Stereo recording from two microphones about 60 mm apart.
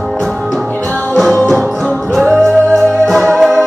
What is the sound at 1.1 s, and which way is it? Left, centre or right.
Music, centre.